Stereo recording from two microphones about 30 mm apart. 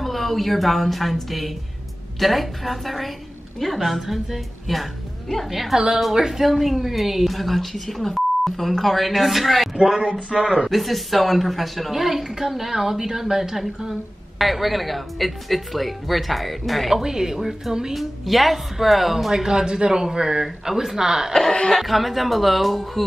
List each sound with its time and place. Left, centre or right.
0.0 s a woman's voice: centre
2.1 s a woman's voice: centre
10.3 s speech: right
10.7 s speech: centre
11.9 s a woman's voice: centre
14.4 s speech: centre
16.9 s a woman's voice: centre
19.4 s speech: right
20.4 s a woman's voice: centre
21.3 s speech: centre
21.8 s speech: centre